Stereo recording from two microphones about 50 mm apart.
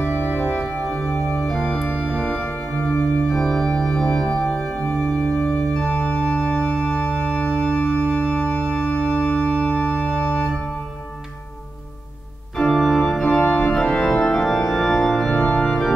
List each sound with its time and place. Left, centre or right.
0.0 s organ: left
0.9 s organ: left
1.7 s organ: left
12.5 s organ: centre
13.2 s organ: centre